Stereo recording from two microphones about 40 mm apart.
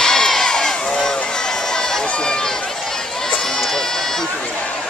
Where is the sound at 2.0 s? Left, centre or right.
Left.